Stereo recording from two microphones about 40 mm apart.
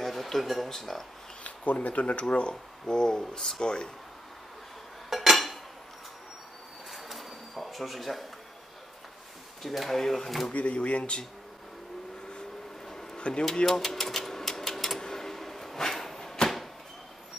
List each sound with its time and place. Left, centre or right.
0.0 s a sound: centre
0.7 s speech: centre
1.4 s speech: left
2.5 s speech: centre
5.3 s dishes: centre
6.9 s pigeon: centre
9.6 s speech: centre
10.5 s speech: left
12.8 s a sound: centre
13.2 s speech: left
13.7 s typewriter: centre
15.0 s a sound: centre